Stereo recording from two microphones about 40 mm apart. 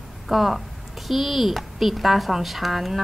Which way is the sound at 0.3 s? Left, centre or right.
Centre.